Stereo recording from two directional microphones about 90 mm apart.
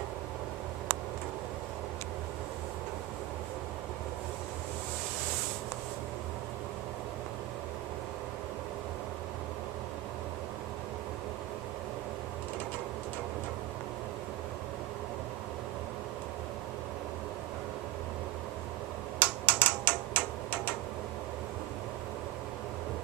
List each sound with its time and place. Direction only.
19.1 s typewriter: 20° left (ahead or behind)